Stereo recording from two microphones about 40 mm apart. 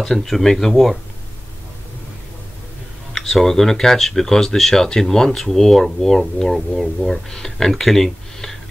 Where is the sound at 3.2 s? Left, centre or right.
Centre.